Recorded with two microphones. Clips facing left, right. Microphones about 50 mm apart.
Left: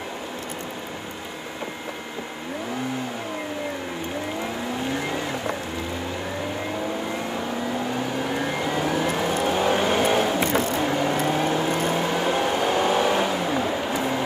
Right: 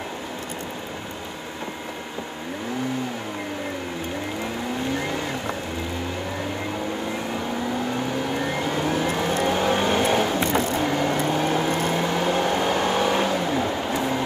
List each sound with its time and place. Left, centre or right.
8.4 s vehicle: centre
11.1 s vehicle: centre
11.9 s vehicle: centre